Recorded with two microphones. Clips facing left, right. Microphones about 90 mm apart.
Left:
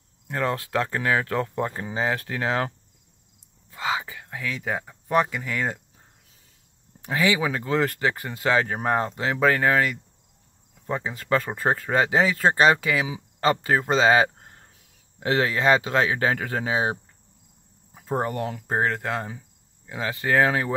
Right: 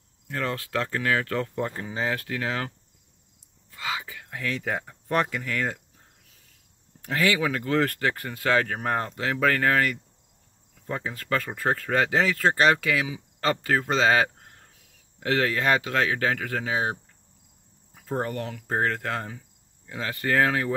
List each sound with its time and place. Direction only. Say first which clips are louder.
0.3 s speech: left 3 dB; 20° left (ahead or behind)
1.8 s speech: left 3 dB; 25° left (ahead or behind)
3.7 s whispering: left 5 dB; 30° left (ahead or behind)
4.3 s speech: even; 5° left (ahead or behind)
7.0 s speech: left 1 dB; 15° left (ahead or behind)